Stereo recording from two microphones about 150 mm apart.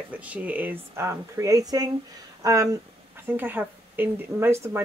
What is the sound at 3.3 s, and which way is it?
Speech, 10° right (ahead or behind).